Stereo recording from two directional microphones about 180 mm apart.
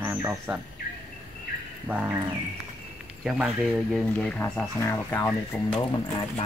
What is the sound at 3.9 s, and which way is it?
Speech, 5° left (ahead or behind).